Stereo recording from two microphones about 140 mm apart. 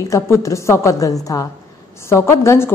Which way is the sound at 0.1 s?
25° left (ahead or behind).